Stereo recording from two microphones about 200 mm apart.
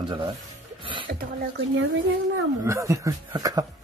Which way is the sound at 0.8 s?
25° right (ahead or behind).